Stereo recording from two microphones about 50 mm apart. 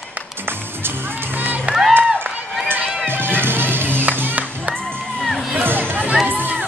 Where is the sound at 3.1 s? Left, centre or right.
Right.